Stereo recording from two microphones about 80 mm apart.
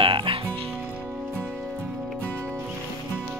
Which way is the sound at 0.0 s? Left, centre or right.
Right.